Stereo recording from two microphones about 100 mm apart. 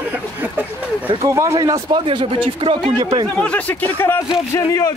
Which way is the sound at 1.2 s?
30° right (ahead or behind).